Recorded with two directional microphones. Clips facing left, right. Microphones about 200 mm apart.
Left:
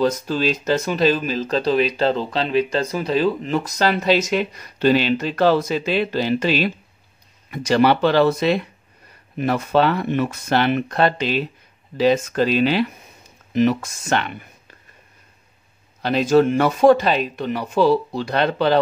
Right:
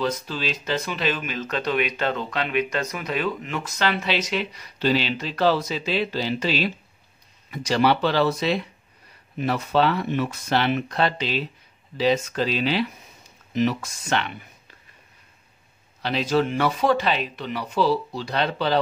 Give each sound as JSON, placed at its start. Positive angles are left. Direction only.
{"t": 0.0, "sound": "speech", "side_deg": 45}
{"t": 16.0, "sound": "speech", "side_deg": 45}